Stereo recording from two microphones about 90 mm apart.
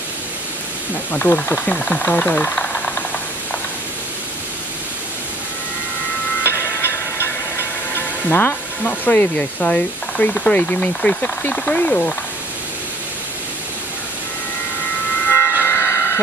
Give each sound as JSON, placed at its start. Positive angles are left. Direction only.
{"t": 1.1, "sound": "speech", "side_deg": 20}
{"t": 6.4, "sound": "a sound", "side_deg": 30}
{"t": 9.4, "sound": "speech", "side_deg": 10}
{"t": 15.2, "sound": "train", "side_deg": 25}